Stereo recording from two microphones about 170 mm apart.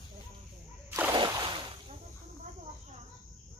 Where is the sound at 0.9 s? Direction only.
15° right (ahead or behind).